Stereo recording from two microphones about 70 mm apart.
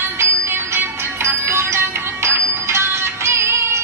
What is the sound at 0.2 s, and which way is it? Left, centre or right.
Music, right.